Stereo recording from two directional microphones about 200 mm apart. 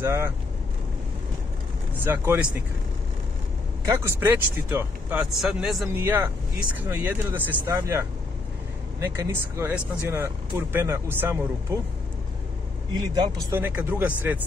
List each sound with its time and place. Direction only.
0.0 s speech: 15° right (ahead or behind)
2.0 s speech: 10° right (ahead or behind)
3.8 s speech: 15° right (ahead or behind)
12.9 s speech: 20° right (ahead or behind)